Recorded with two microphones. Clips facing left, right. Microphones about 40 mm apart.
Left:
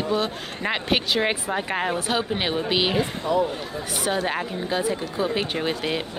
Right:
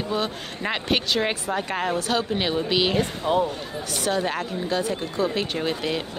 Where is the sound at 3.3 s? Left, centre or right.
Right.